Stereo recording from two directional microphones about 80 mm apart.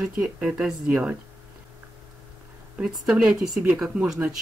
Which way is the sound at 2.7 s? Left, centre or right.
Centre.